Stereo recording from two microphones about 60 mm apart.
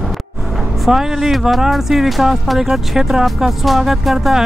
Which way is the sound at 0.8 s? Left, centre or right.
Centre.